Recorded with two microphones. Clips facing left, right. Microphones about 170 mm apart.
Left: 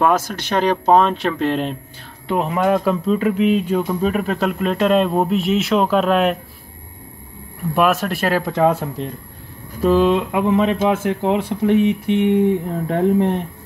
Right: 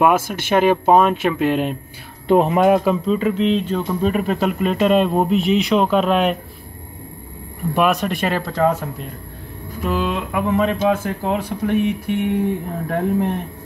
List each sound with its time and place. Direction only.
0.0 s speech: 10° right (ahead or behind)
2.2 s speech: 25° right (ahead or behind)
2.7 s speech: centre (ahead or behind)
7.7 s speech: centre (ahead or behind)
8.5 s speech: 15° left (ahead or behind)
9.8 s speech: 35° left (ahead or behind)
10.3 s speech: 20° left (ahead or behind)